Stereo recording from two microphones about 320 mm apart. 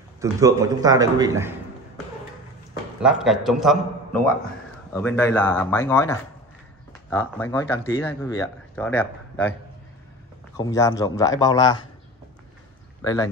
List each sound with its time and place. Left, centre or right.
0.2 s a man's voice: centre
3.0 s a man's voice: centre
13.0 s speech: centre